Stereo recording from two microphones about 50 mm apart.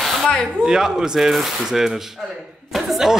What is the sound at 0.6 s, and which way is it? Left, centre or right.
Speech, centre.